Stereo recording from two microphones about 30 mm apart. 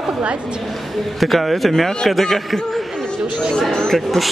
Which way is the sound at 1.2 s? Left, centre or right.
Centre.